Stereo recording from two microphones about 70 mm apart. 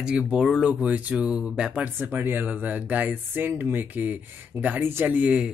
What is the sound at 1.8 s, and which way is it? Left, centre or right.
Speech, right.